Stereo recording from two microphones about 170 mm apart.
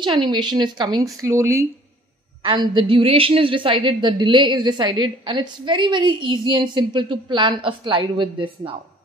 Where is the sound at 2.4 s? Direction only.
25° right (ahead or behind).